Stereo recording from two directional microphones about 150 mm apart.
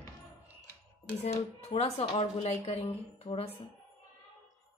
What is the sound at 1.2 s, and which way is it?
A woman's voice, 45° left (ahead or behind).